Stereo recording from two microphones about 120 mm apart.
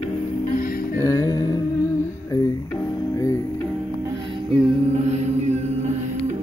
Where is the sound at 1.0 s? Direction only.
25° left (ahead or behind).